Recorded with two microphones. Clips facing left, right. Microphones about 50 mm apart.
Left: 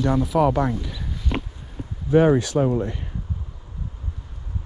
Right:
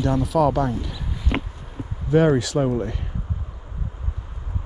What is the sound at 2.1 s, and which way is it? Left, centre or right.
Speech, right.